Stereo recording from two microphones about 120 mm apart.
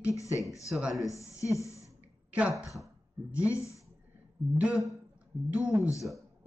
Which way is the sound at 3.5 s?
25° left (ahead or behind).